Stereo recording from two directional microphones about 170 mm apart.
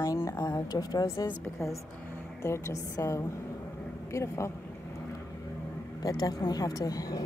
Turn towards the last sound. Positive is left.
turn(degrees=20)  # may be behind; listen again after turning